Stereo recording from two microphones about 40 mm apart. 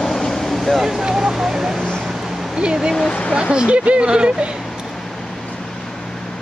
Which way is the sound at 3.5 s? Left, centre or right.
Right.